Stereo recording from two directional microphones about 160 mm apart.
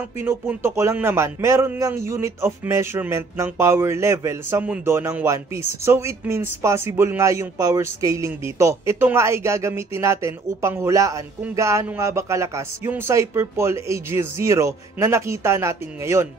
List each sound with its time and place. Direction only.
0.2 s speech: 15° right (ahead or behind)